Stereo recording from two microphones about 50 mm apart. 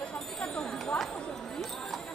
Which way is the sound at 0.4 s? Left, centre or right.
Left.